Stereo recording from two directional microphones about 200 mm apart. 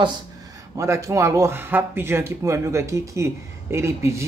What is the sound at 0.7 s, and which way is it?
Speech, 15° right (ahead or behind).